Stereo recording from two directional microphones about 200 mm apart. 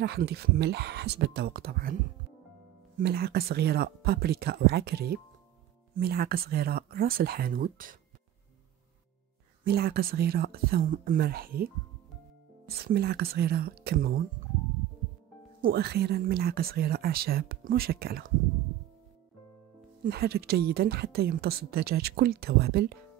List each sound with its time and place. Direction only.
0.0 s speech: 55° right (ahead or behind)
3.0 s a woman's voice: 50° right (ahead or behind)
9.7 s a woman's voice: 50° right (ahead or behind)
15.6 s a woman's voice: 55° right (ahead or behind)
20.0 s a woman's voice: 55° right (ahead or behind)